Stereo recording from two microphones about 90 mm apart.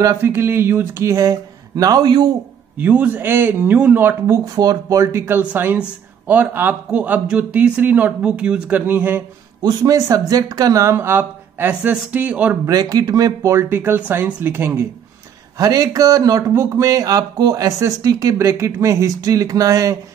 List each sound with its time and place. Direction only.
0.0 s speech: 35° right (ahead or behind); by 2.3 s 50° right (ahead or behind)
2.8 s speech: 15° right (ahead or behind)
4.3 s speech: 40° right (ahead or behind)
5.4 s speech: 20° right (ahead or behind)
9.6 s speech: 45° right (ahead or behind); by 12.5 s 15° right (ahead or behind)
12.6 s speech: 40° right (ahead or behind); by 14.9 s 25° right (ahead or behind)
15.5 s speech: 40° right (ahead or behind)